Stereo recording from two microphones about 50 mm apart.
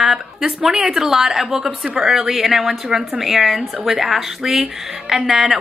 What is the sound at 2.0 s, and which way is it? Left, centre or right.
A woman's voice, centre.